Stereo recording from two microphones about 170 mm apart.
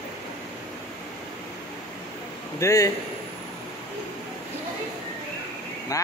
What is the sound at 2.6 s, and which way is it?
Speech, 20° left (ahead or behind).